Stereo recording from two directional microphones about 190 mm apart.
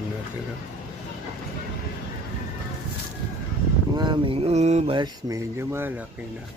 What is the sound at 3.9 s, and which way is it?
Speech, 25° right (ahead or behind).